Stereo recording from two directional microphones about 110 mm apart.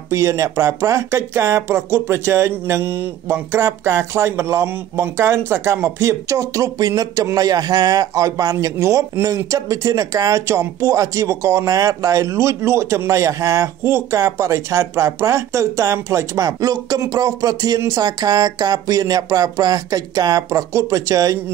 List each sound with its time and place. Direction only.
0.1 s speech: 30° right (ahead or behind)